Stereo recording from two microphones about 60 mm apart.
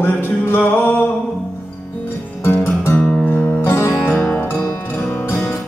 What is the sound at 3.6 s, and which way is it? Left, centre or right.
Music, left.